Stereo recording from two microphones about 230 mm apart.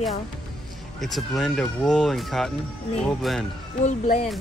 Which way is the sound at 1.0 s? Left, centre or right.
Centre.